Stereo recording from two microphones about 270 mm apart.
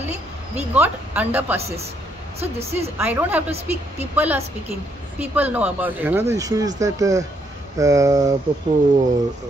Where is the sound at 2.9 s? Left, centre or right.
Centre.